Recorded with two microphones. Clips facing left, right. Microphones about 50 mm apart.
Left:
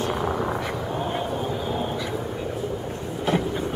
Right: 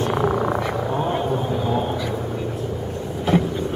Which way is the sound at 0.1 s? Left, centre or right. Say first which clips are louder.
Right 5 dB; centre.